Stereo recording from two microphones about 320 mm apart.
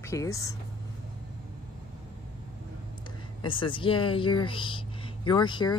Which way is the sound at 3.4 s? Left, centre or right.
Centre.